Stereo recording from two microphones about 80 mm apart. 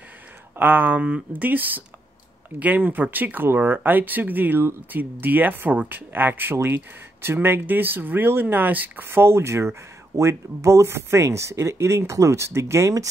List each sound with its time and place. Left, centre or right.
0.6 s speech: right